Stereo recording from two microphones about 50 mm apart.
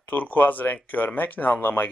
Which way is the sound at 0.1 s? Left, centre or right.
Left.